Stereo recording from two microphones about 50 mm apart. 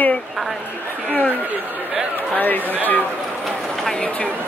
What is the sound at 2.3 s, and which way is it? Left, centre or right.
Speech, left.